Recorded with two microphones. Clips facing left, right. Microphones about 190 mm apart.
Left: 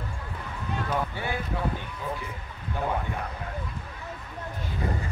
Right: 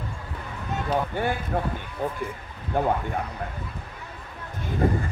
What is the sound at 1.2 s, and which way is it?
Speech, 50° right (ahead or behind).